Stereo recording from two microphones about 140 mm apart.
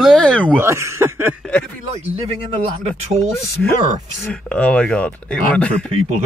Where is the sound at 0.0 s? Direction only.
5° left (ahead or behind).